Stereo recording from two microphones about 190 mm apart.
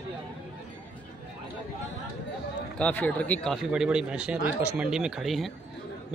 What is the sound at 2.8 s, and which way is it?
Speech, 5° left (ahead or behind).